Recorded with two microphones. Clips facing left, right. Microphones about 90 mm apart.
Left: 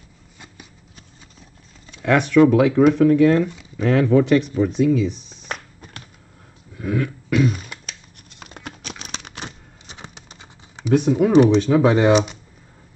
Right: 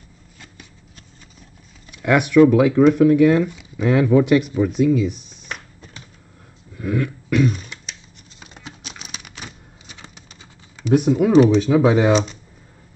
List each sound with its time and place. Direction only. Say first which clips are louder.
0.4 s shuffling cards: left 1 dB; 10° left (ahead or behind)
2.0 s speech: right 1 dB; 10° right (ahead or behind)
2.5 s speech: right 1 dB; centre (ahead or behind)
5.5 s computer keyboard: left 2 dB; 50° left (ahead or behind)
6.8 s cough: right 1 dB; centre (ahead or behind)
7.7 s scissors: even; 55° left (ahead or behind)
9.8 s bird: left 3 dB; 20° left (ahead or behind)
10.9 s speech: right 1 dB; 10° right (ahead or behind)
12.1 s speech: left 1 dB; 15° left (ahead or behind)